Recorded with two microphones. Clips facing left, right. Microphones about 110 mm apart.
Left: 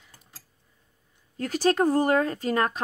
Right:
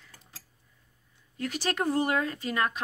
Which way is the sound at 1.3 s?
40° left (ahead or behind).